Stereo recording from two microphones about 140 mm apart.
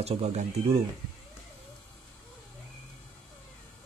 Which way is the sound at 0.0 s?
50° right (ahead or behind).